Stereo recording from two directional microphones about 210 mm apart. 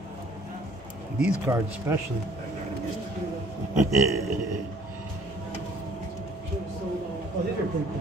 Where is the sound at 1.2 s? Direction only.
15° right (ahead or behind).